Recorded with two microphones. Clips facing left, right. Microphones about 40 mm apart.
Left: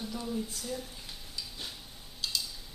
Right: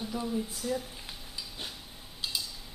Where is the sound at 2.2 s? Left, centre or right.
Centre.